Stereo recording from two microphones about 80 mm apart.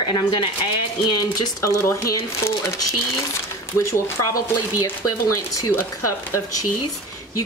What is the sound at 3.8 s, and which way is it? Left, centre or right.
Speech, left.